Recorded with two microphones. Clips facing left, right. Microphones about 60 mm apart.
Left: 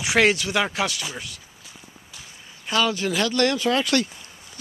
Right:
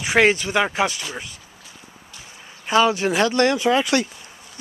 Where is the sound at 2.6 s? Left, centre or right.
Right.